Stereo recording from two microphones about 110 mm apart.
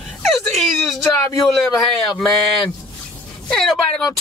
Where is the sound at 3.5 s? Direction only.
5° left (ahead or behind).